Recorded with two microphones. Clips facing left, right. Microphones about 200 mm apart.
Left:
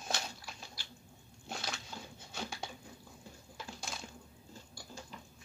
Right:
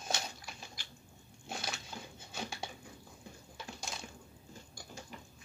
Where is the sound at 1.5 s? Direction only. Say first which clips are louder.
Even; centre (ahead or behind).